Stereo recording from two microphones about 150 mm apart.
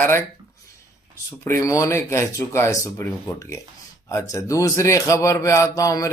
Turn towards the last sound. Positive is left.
turn(degrees=20)  # may be behind; listen again after turning